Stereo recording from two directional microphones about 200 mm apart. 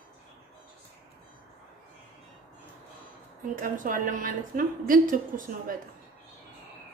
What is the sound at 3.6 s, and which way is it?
A woman's voice, 40° right (ahead or behind).